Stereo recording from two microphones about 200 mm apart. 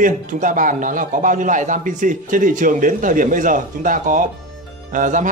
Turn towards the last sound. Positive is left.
turn(degrees=-40)  # may be behind; listen again after turning